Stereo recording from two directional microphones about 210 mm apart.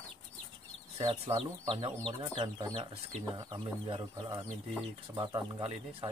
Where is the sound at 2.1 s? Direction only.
25° right (ahead or behind).